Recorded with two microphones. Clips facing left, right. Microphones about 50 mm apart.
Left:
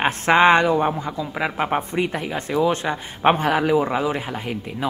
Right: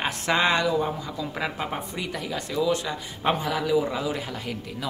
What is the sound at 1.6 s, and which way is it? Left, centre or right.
Speech, left.